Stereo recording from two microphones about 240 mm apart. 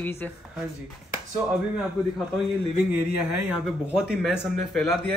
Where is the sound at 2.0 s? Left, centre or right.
Centre.